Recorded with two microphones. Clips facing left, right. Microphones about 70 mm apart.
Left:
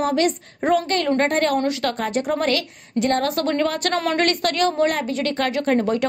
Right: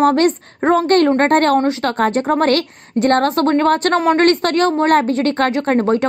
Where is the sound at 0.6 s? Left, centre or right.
Right.